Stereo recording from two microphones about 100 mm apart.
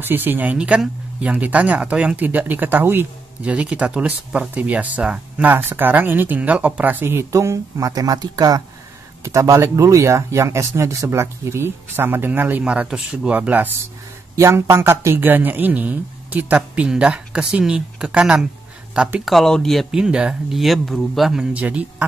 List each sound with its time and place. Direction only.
0.0 s speech: 20° right (ahead or behind)
7.3 s speech: 30° right (ahead or behind)
9.2 s speech: 30° right (ahead or behind)
14.3 s speech: 25° right (ahead or behind)